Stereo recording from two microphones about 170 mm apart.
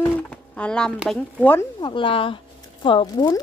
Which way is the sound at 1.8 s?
30° left (ahead or behind).